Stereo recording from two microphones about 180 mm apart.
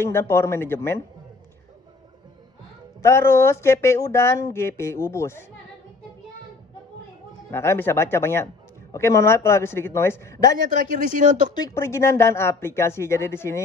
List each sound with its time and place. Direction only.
0.0 s speech: 15° left (ahead or behind)
3.0 s speech: 15° left (ahead or behind)
7.5 s speech: 15° left (ahead or behind)
10.7 s speech: 50° right (ahead or behind)
11.5 s speech: 15° left (ahead or behind)